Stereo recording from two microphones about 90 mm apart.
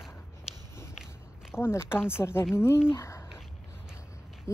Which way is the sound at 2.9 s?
30° left (ahead or behind).